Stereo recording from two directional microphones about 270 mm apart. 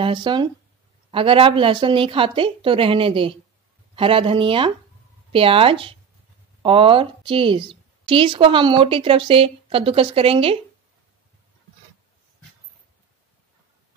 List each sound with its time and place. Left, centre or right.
0.0 s a woman's voice: centre